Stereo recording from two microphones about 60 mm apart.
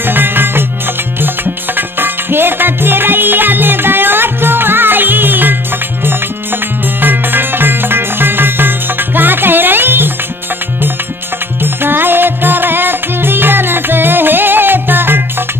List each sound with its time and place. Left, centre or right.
0.0 s music: right
7.0 s music: right
11.6 s music: right